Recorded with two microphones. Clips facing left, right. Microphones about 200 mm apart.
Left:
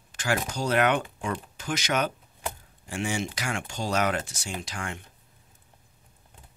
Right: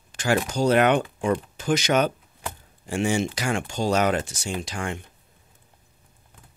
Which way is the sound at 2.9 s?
30° right (ahead or behind).